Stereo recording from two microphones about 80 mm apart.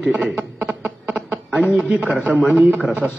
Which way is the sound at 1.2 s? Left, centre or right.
Centre.